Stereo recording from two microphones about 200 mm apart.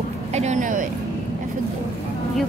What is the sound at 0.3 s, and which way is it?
Speech, 35° right (ahead or behind).